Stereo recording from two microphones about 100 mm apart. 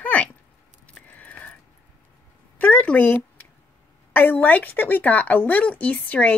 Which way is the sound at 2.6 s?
15° left (ahead or behind).